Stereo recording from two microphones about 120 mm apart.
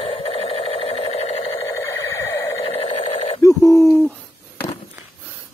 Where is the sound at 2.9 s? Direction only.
75° left (ahead or behind).